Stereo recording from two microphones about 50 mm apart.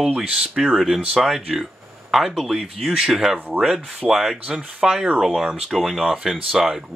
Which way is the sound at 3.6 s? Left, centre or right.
Centre.